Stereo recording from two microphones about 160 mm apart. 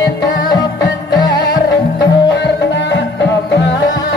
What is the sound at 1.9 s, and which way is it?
Music, 90° left.